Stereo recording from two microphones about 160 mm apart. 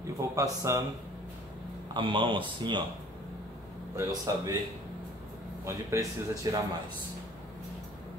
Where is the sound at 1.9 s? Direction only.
30° right (ahead or behind).